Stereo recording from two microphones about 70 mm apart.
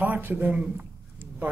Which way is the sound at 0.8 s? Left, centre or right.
Right.